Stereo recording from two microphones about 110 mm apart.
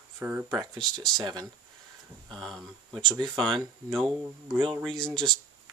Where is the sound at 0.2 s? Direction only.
20° right (ahead or behind).